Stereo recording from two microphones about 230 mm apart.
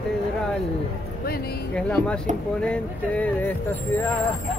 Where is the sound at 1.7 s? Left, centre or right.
Centre.